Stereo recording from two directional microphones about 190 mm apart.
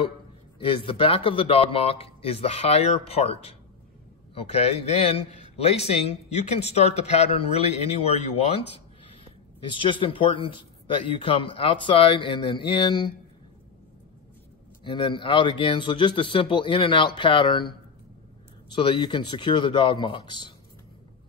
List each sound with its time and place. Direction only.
0.6 s a man's voice: 30° left (ahead or behind)
14.8 s a man's voice: 25° left (ahead or behind)